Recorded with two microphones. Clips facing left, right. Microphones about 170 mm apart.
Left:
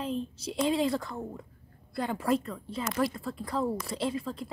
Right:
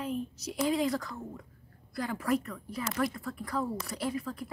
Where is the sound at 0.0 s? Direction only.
30° left (ahead or behind).